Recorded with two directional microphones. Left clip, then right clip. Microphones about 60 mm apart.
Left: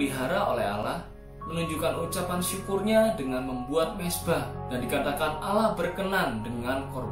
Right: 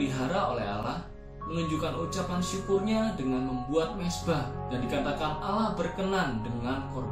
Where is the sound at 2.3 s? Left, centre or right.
Left.